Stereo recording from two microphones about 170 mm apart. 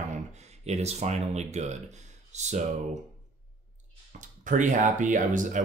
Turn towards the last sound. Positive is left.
turn(degrees=-50)  # may be behind; listen again after turning